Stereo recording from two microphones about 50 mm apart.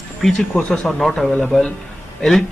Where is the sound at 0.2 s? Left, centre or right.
Centre.